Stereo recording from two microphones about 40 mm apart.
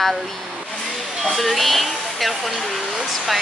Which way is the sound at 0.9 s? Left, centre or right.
Centre.